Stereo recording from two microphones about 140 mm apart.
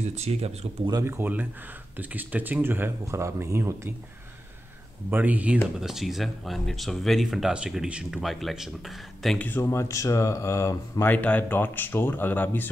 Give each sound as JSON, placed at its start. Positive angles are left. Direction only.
{"t": 0.1, "sound": "speech", "side_deg": -50}
{"t": 0.8, "sound": "speech", "side_deg": -25}
{"t": 1.1, "sound": "speech", "side_deg": -15}
{"t": 5.1, "sound": "speech", "side_deg": -10}
{"t": 9.4, "sound": "speech", "side_deg": 15}